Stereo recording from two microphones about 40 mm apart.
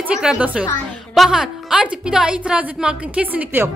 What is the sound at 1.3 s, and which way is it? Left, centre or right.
A woman's voice, centre.